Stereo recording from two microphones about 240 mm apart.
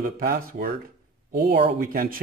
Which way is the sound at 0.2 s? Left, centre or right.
Right.